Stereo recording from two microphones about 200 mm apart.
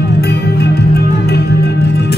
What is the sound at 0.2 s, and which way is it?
Music, 55° left (ahead or behind).